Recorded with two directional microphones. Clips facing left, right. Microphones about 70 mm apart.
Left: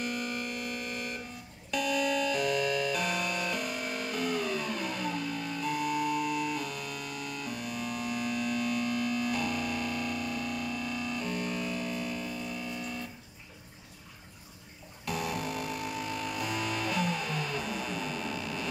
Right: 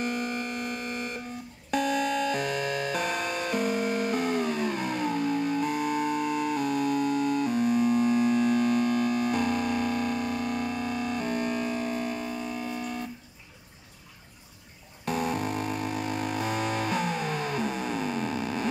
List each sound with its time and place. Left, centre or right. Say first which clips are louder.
0.0 s a sound: right 4 dB; right
1.7 s music: right 3 dB; right
15.0 s music: right 5 dB; right